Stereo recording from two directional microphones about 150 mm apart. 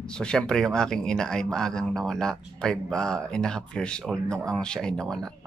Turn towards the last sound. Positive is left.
turn(degrees=5)  # may be behind; listen again after turning